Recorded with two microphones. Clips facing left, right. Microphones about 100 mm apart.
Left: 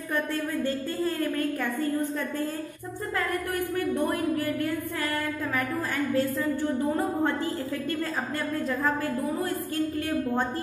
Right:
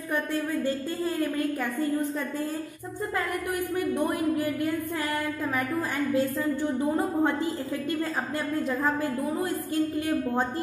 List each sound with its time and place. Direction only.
3.2 s a woman's voice: 15° right (ahead or behind)
6.1 s a woman's voice: 15° right (ahead or behind)
8.5 s a woman's voice: 15° right (ahead or behind)